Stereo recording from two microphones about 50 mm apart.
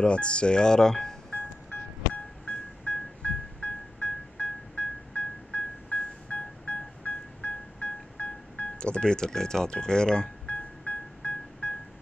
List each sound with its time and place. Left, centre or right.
0.0 s speech: left
1.3 s music: left